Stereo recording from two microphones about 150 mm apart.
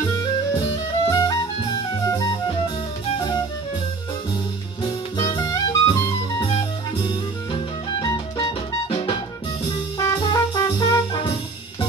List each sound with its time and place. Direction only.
0.6 s music: 20° left (ahead or behind)
4.8 s music: 30° left (ahead or behind)
6.4 s music: 40° left (ahead or behind)
7.5 s music: 25° left (ahead or behind)
9.9 s brass instrument: 25° left (ahead or behind)